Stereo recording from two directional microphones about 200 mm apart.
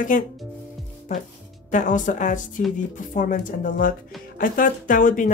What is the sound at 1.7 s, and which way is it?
Speech, 40° left (ahead or behind).